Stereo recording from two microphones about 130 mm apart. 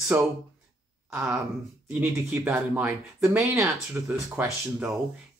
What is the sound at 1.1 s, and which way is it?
Speech, 15° right (ahead or behind).